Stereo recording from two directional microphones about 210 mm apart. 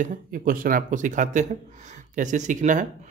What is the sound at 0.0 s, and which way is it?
Speech, 40° right (ahead or behind).